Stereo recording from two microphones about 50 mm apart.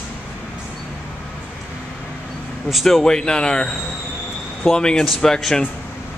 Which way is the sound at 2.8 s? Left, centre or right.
Centre.